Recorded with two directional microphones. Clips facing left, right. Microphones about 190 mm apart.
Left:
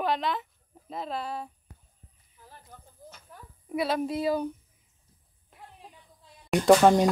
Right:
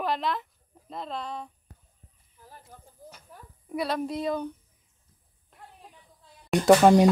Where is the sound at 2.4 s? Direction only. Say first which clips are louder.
Right 1 dB; 5° right (ahead or behind).